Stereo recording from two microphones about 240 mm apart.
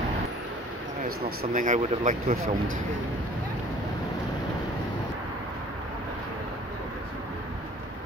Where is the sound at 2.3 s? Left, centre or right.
Right.